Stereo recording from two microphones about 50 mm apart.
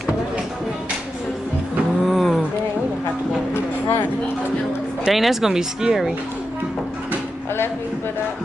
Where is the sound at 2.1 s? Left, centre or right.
Centre.